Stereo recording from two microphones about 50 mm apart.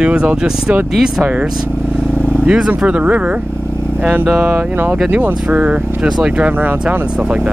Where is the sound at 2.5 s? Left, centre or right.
Right.